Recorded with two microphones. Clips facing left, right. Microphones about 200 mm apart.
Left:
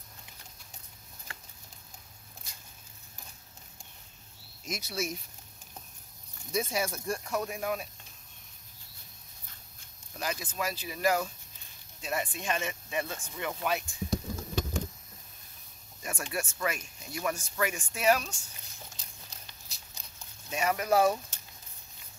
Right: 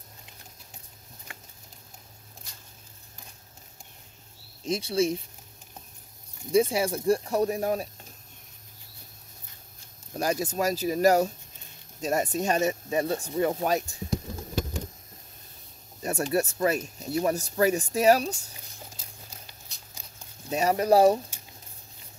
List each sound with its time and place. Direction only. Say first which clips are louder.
4.6 s speech: right 10 dB; 30° right (ahead or behind)
6.5 s speech: right 9 dB; 30° right (ahead or behind)
10.1 s speech: right 8 dB; 40° right (ahead or behind)
16.0 s speech: right 10 dB; 35° right (ahead or behind)
18.9 s a sound: right 4 dB; 5° right (ahead or behind)
20.4 s speech: right 6 dB; 35° right (ahead or behind)